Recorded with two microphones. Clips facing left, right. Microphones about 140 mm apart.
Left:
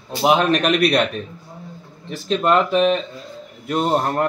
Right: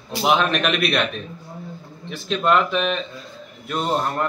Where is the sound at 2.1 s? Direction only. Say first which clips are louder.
Left 2 dB; 35° left (ahead or behind).